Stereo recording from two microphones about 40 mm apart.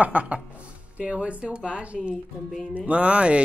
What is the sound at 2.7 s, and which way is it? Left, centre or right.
Speech, right.